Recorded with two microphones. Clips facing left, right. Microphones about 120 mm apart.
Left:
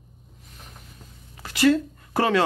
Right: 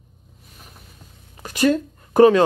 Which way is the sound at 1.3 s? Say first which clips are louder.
Right 1 dB; 15° right (ahead or behind).